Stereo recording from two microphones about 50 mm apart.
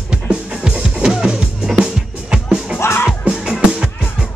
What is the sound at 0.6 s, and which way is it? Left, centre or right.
Music, centre.